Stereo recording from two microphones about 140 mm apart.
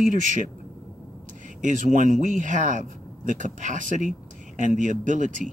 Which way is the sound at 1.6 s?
65° right (ahead or behind).